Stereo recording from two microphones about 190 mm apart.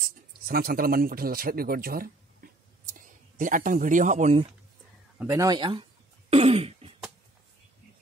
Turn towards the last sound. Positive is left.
turn(degrees=-30)  # may be behind; listen again after turning